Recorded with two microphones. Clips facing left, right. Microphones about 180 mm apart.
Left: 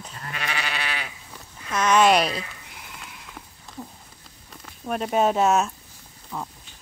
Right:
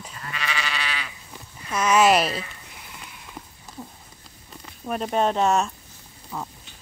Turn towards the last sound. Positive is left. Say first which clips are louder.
# even
turn(degrees=0)  # may be behind; listen again after turning